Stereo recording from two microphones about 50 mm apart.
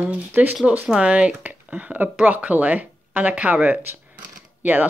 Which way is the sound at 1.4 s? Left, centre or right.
Right.